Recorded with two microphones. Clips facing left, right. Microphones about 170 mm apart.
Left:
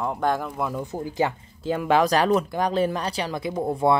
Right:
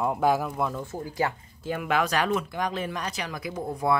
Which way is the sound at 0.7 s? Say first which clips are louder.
Left 4 dB; 20° left (ahead or behind).